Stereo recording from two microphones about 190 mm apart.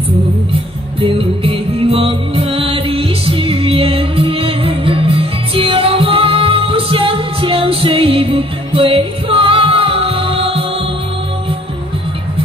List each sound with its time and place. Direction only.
1.0 s music: 30° right (ahead or behind)